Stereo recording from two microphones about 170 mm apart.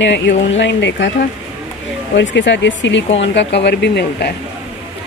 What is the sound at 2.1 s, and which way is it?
Speech, 90° left.